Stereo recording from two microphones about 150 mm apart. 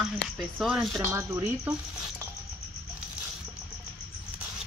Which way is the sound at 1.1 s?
15° right (ahead or behind).